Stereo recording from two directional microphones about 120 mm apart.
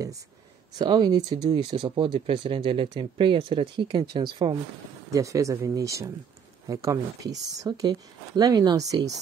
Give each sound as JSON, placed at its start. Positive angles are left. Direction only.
{"t": 0.7, "sound": "speech", "side_deg": -35}
{"t": 5.1, "sound": "speech", "side_deg": -25}